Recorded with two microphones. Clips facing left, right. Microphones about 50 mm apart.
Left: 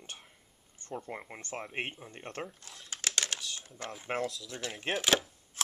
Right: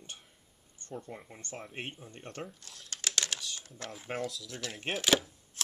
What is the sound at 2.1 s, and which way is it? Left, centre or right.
Speech, left.